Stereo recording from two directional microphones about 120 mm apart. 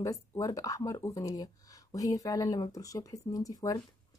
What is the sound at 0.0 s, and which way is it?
Speech, 30° left (ahead or behind).